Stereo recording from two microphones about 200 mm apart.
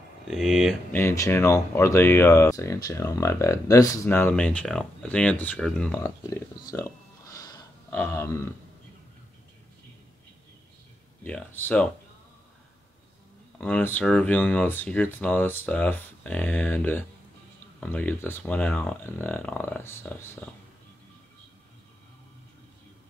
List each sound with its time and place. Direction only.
0.3 s speech: centre (ahead or behind)
0.9 s speech: 15° left (ahead or behind)
6.7 s a sound: 15° left (ahead or behind)
7.9 s speech: 10° left (ahead or behind)
11.2 s speech: 10° left (ahead or behind)
13.6 s speech: 10° left (ahead or behind)